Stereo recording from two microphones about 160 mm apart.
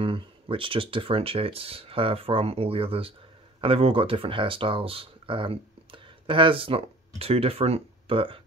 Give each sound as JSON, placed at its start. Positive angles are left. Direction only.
{"t": 0.0, "sound": "speech", "side_deg": -35}